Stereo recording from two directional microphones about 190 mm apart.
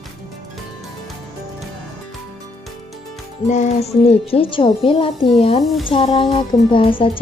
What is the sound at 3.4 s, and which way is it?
A woman's voice, 35° left (ahead or behind).